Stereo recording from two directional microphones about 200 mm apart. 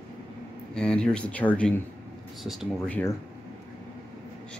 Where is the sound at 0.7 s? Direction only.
5° left (ahead or behind).